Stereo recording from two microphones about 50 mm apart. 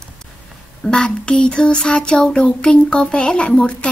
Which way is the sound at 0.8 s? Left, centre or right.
Centre.